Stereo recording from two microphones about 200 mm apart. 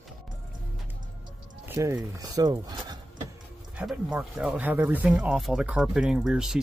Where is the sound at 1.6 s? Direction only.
10° right (ahead or behind).